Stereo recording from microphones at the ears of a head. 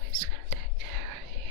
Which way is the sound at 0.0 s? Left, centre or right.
Right.